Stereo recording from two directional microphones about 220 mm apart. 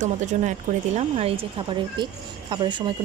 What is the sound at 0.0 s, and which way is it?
A woman's voice, 35° right (ahead or behind).